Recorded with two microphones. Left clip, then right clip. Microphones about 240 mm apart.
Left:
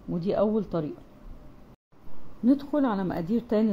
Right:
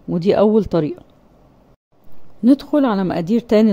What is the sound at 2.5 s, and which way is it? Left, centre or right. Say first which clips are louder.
A woman's voice: right 10 dB; right.